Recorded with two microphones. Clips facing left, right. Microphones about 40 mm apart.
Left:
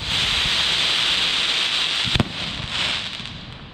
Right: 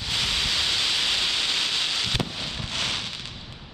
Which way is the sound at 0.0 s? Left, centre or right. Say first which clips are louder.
Left 4 dB; left.